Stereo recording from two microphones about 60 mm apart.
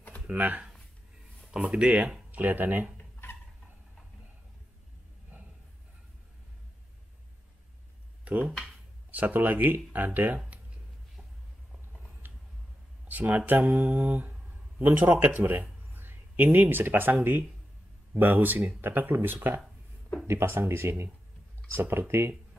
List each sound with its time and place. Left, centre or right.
0.3 s speech: right
2.3 s speech: right
5.3 s a sound: right
8.3 s speech: right
12.2 s a sound: right
13.1 s speech: right